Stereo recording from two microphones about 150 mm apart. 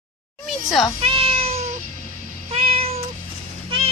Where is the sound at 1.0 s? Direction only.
40° right (ahead or behind).